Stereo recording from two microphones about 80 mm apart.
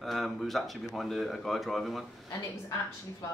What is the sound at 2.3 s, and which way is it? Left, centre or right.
Speech, left.